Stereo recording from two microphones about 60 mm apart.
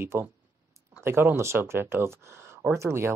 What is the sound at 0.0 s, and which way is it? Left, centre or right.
Speech, right.